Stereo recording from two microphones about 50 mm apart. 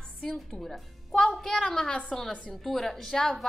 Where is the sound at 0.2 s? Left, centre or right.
Centre.